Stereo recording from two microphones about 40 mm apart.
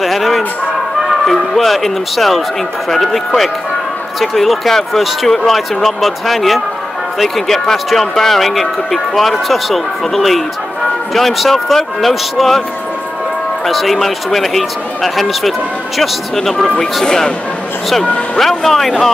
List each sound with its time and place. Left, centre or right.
0.0 s a sound: centre
1.0 s speech: centre
4.2 s speech: centre
13.7 s speech: centre
18.0 s speech: left
18.4 s speech: centre